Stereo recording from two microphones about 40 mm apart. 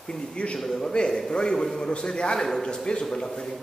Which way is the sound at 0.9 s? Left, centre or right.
Centre.